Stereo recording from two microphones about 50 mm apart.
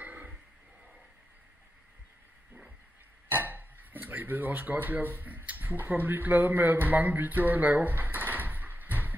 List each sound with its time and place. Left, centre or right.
0.0 s a sound: right
3.3 s speech: right
7.9 s drawer open or close: right